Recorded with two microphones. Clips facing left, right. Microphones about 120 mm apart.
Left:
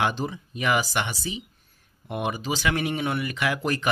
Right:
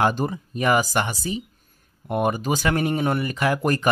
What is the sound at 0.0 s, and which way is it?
Speech, 45° right (ahead or behind).